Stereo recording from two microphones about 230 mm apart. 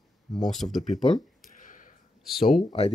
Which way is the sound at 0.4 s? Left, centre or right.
Centre.